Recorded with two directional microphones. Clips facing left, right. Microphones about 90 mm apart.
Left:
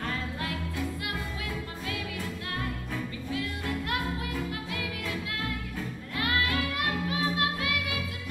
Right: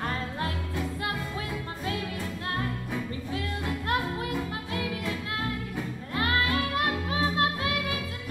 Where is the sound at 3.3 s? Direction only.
35° right (ahead or behind).